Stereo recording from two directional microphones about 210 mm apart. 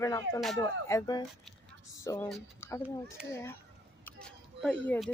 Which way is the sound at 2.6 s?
10° left (ahead or behind).